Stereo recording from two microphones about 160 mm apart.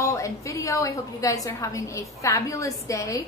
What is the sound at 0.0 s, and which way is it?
Speech, 20° left (ahead or behind).